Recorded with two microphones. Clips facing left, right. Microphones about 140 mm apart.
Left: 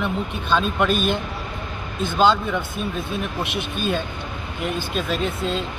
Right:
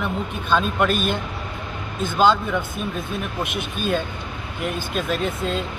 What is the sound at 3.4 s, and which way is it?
Speech, 50° right (ahead or behind).